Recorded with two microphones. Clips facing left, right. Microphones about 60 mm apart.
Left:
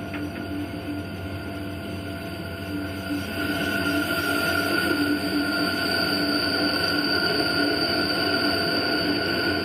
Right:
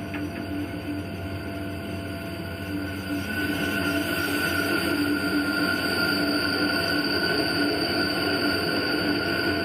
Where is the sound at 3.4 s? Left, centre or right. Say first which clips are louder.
Left 2 dB; centre.